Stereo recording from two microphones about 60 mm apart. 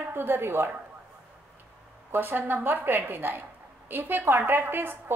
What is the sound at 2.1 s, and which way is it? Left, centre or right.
A woman's voice, right.